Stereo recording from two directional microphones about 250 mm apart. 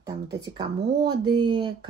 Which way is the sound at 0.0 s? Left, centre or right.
Centre.